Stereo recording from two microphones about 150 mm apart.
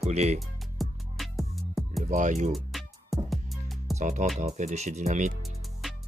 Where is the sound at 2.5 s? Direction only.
Centre (ahead or behind).